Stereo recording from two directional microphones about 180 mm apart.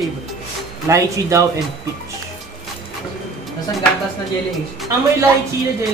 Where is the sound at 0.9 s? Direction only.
15° right (ahead or behind).